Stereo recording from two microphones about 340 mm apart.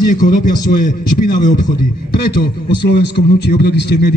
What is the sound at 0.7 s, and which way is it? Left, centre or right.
Speech, left.